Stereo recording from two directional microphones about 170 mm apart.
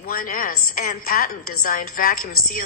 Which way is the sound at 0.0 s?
55° left (ahead or behind).